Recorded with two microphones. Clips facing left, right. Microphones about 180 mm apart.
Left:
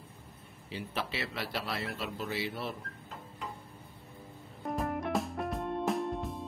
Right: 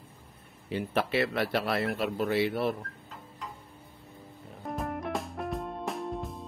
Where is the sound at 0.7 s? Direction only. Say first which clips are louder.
Right 8 dB; 55° right (ahead or behind).